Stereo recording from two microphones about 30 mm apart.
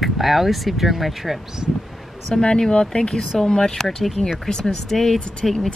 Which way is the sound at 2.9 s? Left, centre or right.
Centre.